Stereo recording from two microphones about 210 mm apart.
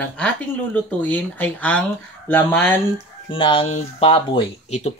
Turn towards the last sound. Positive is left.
turn(degrees=30)  # may be behind; listen again after turning